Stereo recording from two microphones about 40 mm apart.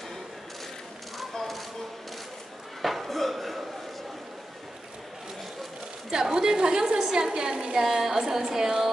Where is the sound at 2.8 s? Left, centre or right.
Centre.